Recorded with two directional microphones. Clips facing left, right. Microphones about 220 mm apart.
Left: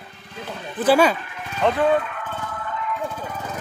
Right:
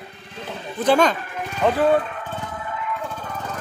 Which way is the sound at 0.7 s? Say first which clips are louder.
Left 1 dB; 5° left (ahead or behind).